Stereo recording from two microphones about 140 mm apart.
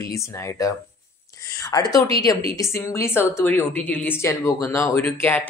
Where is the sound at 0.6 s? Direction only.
20° left (ahead or behind).